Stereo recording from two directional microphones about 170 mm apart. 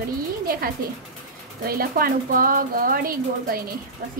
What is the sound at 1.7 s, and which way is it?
A woman's voice, 60° right (ahead or behind).